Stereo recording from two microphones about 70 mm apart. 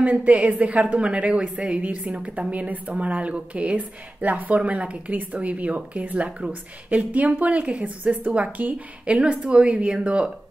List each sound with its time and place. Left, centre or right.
0.0 s a woman's voice: centre